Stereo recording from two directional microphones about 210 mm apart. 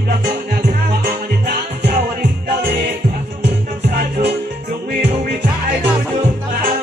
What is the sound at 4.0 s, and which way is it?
Music, 55° right (ahead or behind).